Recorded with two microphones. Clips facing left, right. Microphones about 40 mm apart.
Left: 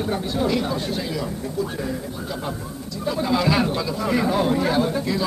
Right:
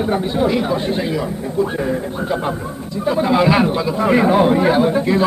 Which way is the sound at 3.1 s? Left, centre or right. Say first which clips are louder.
Right 6 dB; right.